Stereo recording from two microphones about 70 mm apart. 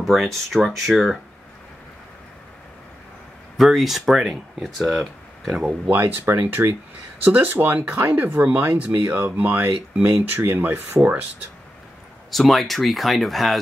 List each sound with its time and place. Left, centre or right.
0.0 s speech: centre
3.5 s speech: centre
5.9 s speech: right
12.3 s speech: centre